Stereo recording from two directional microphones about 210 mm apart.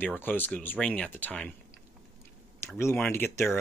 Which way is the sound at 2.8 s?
10° left (ahead or behind).